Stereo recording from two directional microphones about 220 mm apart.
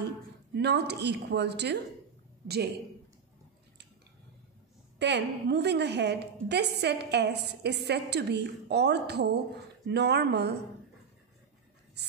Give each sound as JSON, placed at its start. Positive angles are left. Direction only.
{"t": 0.6, "sound": "a woman's voice", "side_deg": -50}
{"t": 4.9, "sound": "a woman's voice", "side_deg": -50}